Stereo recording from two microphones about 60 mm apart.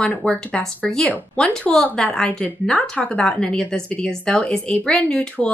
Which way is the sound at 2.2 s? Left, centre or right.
Left.